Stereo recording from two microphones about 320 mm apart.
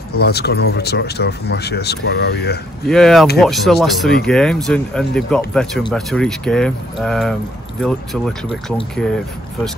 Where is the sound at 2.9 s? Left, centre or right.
Centre.